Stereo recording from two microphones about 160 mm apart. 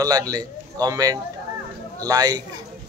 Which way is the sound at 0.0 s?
20° right (ahead or behind).